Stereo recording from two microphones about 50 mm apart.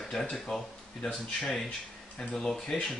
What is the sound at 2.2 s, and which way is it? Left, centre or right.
Speech, centre.